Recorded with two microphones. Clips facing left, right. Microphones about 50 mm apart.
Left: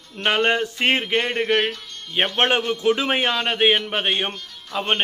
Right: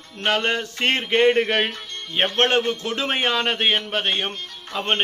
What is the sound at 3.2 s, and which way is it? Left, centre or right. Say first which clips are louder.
A man's voice: left 1 dB; centre.